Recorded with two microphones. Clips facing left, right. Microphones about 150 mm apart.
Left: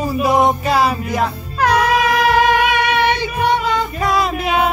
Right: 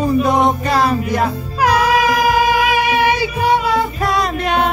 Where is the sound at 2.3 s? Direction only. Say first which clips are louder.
Even; 60° left (ahead or behind).